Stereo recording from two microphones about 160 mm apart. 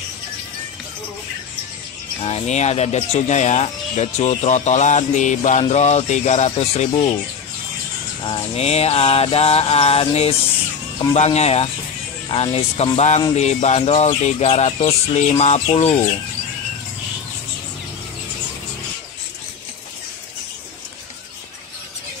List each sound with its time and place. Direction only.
2.2 s speech: 40° left (ahead or behind)
8.3 s mantra: 40° left (ahead or behind)
13.4 s speech: 45° left (ahead or behind)